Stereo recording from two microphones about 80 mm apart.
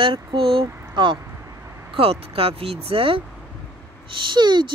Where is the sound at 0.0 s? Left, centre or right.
Right.